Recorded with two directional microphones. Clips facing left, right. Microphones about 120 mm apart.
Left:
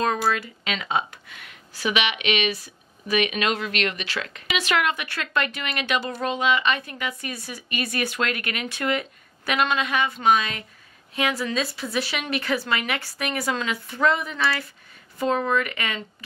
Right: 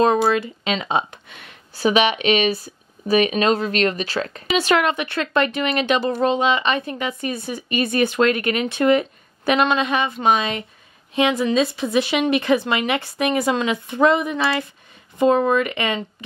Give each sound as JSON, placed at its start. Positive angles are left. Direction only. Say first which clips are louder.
{"t": 0.0, "sound": "speech", "louder": "right 7 dB", "side_deg": -25}